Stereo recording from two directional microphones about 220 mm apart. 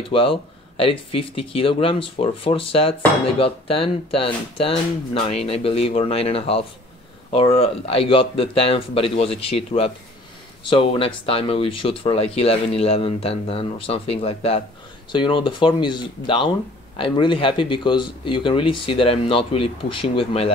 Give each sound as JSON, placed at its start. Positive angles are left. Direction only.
{"t": 0.1, "sound": "speech", "side_deg": 25}